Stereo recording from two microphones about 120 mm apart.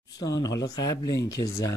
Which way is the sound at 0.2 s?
30° left (ahead or behind).